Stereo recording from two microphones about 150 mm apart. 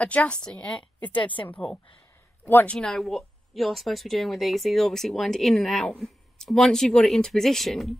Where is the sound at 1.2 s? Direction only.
35° left (ahead or behind).